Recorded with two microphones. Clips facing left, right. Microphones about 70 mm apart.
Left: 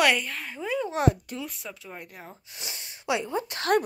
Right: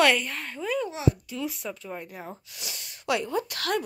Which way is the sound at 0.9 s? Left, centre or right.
Left.